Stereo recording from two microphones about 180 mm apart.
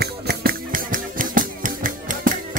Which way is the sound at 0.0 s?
60° right (ahead or behind).